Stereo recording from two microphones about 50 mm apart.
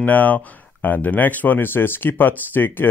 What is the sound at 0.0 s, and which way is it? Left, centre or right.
Speech, left.